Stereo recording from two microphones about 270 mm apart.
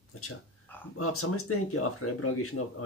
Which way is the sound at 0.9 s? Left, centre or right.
Left.